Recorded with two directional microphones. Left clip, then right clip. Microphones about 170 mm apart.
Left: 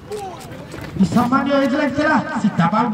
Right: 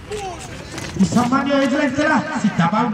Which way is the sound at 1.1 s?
15° left (ahead or behind).